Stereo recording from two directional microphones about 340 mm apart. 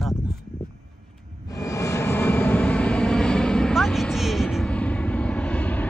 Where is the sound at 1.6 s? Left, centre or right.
Centre.